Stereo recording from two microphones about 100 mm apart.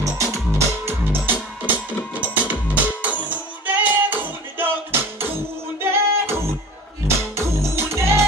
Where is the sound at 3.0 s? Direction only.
15° right (ahead or behind).